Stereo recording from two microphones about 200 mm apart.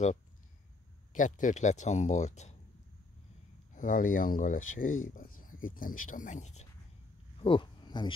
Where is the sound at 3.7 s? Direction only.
40° left (ahead or behind).